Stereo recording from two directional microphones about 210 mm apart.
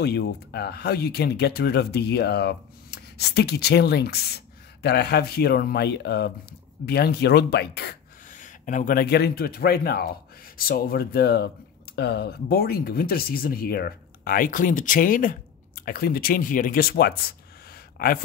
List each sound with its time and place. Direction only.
0.0 s speech: 50° left (ahead or behind)